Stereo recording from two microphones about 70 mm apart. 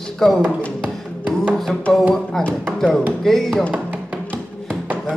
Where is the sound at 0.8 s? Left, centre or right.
Centre.